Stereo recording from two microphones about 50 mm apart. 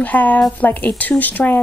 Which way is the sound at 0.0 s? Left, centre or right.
Left.